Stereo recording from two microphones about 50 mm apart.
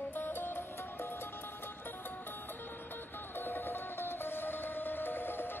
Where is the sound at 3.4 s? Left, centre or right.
Left.